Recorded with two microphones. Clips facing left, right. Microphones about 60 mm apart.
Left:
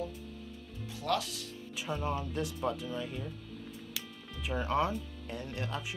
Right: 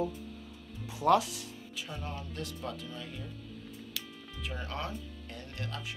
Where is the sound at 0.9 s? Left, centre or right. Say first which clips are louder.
Right 7 dB; centre.